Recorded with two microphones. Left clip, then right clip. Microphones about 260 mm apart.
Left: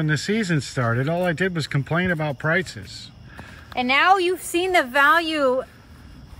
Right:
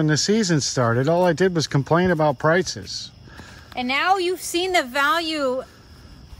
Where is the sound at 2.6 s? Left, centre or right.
Right.